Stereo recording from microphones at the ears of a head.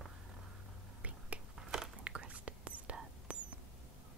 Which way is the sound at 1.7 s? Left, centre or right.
Right.